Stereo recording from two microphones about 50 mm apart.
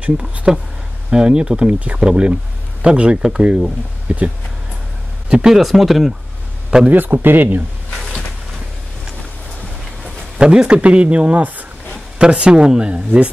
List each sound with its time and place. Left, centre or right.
0.0 s speech: right
5.3 s speech: centre
5.6 s speech: centre
6.9 s a man's voice: right
10.3 s speech: centre
12.2 s speech: centre